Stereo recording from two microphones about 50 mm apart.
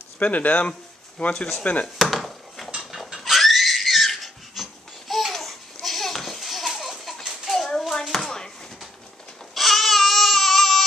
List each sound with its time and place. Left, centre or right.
0.2 s speech: left
2.0 s chopping: centre
2.8 s a sound: centre
8.1 s chopping: centre
9.5 s baby cry: centre